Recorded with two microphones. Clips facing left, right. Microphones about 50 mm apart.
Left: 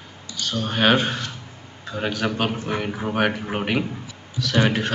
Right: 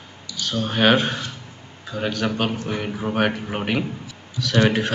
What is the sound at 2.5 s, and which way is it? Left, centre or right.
Speech, left.